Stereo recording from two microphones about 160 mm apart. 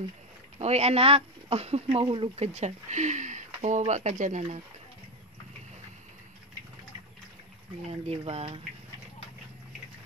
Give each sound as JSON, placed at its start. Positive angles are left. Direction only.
{"t": 0.6, "sound": "speech", "side_deg": -40}
{"t": 7.9, "sound": "speech", "side_deg": -40}